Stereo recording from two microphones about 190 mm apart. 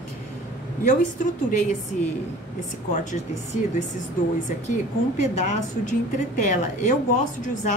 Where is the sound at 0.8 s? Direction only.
40° left (ahead or behind).